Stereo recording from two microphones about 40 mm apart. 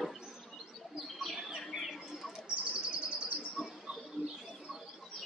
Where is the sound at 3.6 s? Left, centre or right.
Centre.